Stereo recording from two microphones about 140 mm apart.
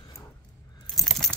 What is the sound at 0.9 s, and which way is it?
Keys jangling, centre (ahead or behind).